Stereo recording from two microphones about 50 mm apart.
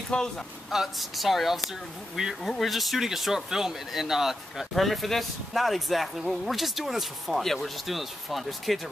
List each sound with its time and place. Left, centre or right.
0.1 s speech: left
0.7 s speech: centre
2.2 s speech: centre
2.6 s speech: centre